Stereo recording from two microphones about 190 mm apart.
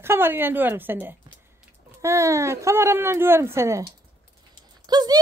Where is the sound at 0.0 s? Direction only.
10° right (ahead or behind).